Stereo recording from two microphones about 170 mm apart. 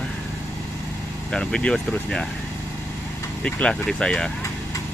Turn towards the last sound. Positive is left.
turn(degrees=5)  # may be behind; listen again after turning